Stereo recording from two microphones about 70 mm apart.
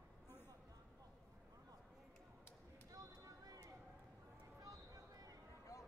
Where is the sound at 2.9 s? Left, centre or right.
Right.